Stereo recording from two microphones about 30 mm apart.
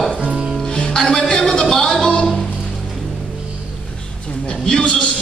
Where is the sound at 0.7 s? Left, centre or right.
Left.